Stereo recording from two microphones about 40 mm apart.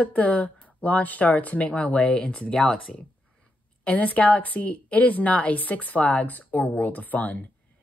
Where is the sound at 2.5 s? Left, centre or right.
Left.